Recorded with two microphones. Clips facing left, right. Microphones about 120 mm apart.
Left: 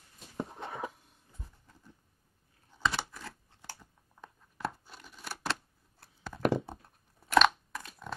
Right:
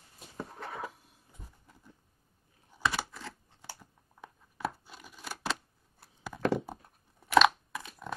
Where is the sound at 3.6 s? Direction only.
10° right (ahead or behind).